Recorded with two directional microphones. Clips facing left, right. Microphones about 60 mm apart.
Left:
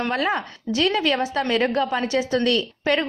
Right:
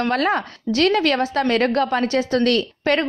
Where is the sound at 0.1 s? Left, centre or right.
Right.